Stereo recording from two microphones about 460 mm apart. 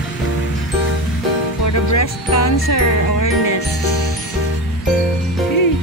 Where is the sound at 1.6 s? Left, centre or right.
Left.